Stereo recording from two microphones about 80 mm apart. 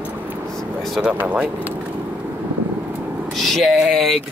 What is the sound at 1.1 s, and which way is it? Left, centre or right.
Speech, centre.